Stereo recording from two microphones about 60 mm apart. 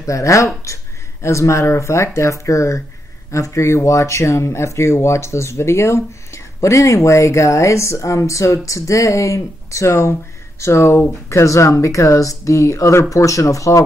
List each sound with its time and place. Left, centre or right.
0.0 s speech: left